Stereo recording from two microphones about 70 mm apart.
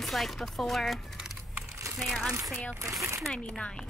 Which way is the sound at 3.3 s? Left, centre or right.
Centre.